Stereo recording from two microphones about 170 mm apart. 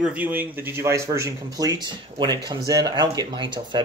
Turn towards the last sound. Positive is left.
turn(degrees=-25)  # may be behind; listen again after turning